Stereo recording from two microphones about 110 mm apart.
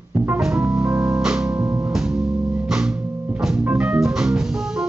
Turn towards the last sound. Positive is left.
turn(degrees=-5)  # may be behind; listen again after turning